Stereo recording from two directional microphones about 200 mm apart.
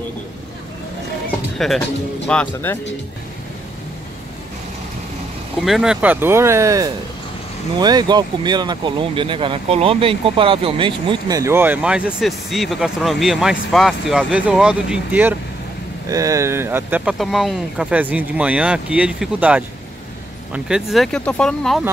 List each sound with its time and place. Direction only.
1.6 s speech: 5° left (ahead or behind)
5.6 s speech: centre (ahead or behind)